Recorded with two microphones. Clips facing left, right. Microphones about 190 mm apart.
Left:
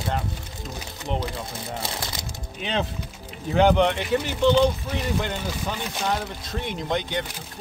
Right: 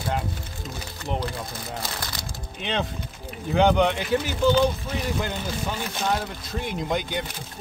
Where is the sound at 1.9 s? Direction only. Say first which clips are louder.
Left 2 dB; 25° left (ahead or behind).